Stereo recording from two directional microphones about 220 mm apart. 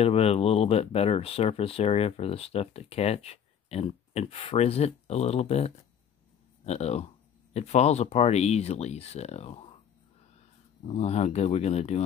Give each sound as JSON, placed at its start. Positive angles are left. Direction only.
{"t": 0.0, "sound": "speech", "side_deg": 25}
{"t": 10.9, "sound": "speech", "side_deg": 30}